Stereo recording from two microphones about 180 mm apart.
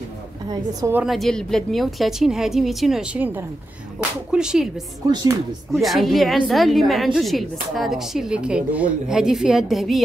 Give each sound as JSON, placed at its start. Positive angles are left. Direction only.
{"t": 0.5, "sound": "a woman's voice", "side_deg": -20}
{"t": 0.9, "sound": "a woman's voice", "side_deg": 0}
{"t": 5.7, "sound": "a woman's voice", "side_deg": 0}